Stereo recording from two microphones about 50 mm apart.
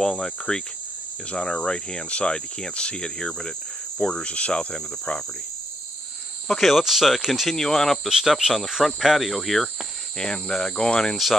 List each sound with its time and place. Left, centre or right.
0.0 s cricket: centre
6.6 s speech: centre
7.4 s cricket: centre
8.1 s speech: centre
10.1 s cricket: centre